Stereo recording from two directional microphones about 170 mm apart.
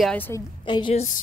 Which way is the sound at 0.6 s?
25° left (ahead or behind).